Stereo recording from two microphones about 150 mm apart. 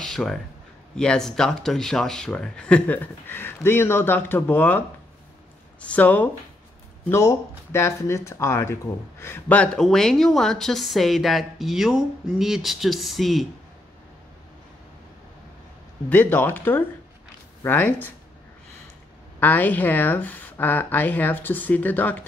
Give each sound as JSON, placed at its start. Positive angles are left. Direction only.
{"t": 0.0, "sound": "a sound", "side_deg": 5}
{"t": 0.9, "sound": "speech", "side_deg": 5}
{"t": 16.1, "sound": "speech", "side_deg": 10}
{"t": 19.4, "sound": "speech", "side_deg": 10}